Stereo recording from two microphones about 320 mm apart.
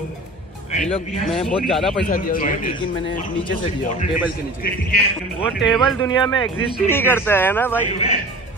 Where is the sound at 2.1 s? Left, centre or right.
Left.